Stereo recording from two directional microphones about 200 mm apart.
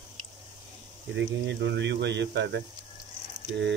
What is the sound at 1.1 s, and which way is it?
Speech, 60° right (ahead or behind).